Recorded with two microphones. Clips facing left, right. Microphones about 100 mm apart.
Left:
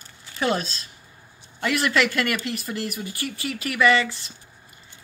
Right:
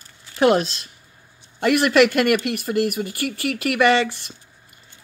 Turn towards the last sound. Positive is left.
turn(degrees=-65)  # may be behind; listen again after turning